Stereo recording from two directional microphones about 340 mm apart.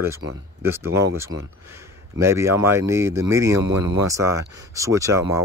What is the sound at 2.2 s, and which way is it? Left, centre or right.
Speech, centre.